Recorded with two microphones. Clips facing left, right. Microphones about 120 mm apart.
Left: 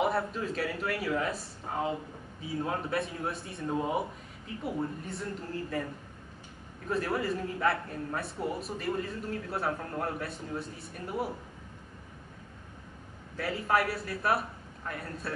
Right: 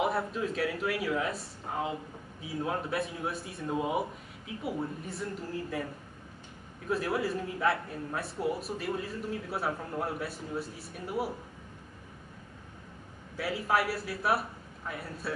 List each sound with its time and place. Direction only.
0.0 s a man's voice: centre (ahead or behind)
6.9 s a man's voice: 5° right (ahead or behind)
13.4 s a man's voice: centre (ahead or behind)